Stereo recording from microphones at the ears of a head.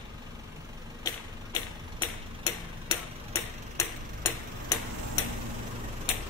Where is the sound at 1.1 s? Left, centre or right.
Left.